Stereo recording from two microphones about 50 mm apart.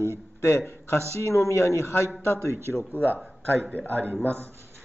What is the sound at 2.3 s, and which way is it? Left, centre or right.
Speech, right.